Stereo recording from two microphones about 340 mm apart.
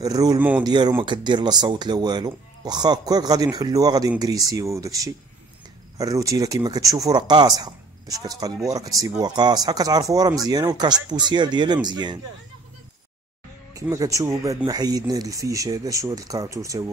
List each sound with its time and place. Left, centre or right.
0.0 s speech: centre
13.7 s speech: centre